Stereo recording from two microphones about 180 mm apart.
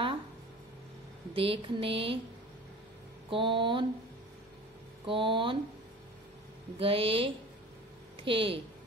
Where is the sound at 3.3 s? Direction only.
30° right (ahead or behind).